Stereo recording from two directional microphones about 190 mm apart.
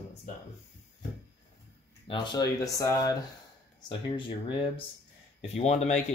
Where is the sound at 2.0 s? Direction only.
25° left (ahead or behind).